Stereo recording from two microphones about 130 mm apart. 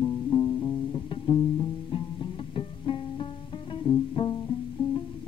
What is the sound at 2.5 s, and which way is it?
Music, 40° left (ahead or behind).